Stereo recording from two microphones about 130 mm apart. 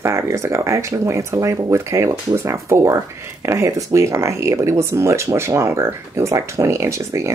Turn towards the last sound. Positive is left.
turn(degrees=-20)  # may be behind; listen again after turning